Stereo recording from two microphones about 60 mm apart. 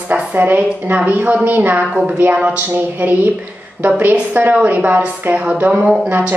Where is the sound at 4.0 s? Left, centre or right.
Right.